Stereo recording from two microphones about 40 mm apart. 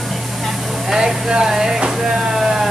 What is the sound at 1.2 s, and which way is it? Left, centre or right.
Speech, centre.